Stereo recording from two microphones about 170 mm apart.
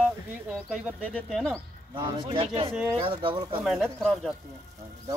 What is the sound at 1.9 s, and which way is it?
Speech, 30° right (ahead or behind).